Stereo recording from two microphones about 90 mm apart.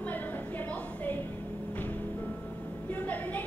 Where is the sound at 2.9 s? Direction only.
20° left (ahead or behind).